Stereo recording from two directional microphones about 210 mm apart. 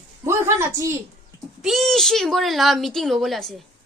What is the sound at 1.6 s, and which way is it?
Speech, centre (ahead or behind).